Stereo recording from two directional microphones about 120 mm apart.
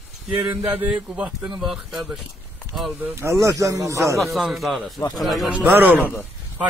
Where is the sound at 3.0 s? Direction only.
20° right (ahead or behind).